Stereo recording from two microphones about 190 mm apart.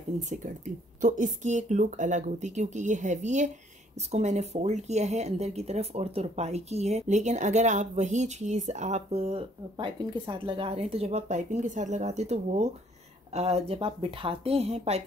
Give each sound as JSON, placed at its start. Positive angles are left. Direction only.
{"t": 0.2, "sound": "speech", "side_deg": -40}